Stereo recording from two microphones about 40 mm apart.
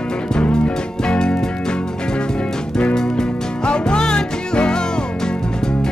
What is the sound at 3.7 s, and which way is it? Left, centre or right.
Music, left.